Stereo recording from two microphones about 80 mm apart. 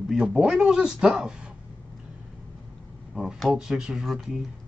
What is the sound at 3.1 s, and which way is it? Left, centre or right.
Speech, centre.